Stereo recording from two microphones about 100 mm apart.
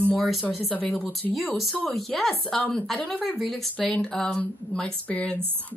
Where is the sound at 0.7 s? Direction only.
15° left (ahead or behind).